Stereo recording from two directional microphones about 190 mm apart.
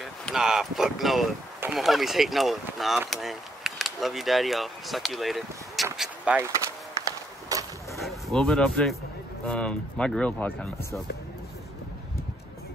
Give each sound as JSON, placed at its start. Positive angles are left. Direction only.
{"t": 0.0, "sound": "speech", "side_deg": 0}
{"t": 5.9, "sound": "vehicle", "side_deg": -5}
{"t": 7.1, "sound": "a sound", "side_deg": -20}
{"t": 8.0, "sound": "speech", "side_deg": 0}